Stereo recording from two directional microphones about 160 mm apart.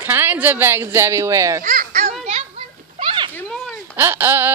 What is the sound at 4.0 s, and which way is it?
Speech, 15° right (ahead or behind).